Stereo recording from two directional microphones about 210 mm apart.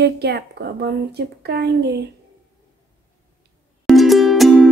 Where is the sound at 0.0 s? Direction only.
50° right (ahead or behind).